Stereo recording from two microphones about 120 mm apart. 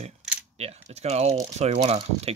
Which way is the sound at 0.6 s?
60° right (ahead or behind).